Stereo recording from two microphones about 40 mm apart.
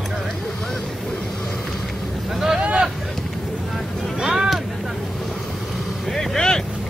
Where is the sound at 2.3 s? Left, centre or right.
Centre.